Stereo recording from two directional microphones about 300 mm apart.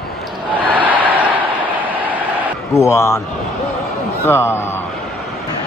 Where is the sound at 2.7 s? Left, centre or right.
Centre.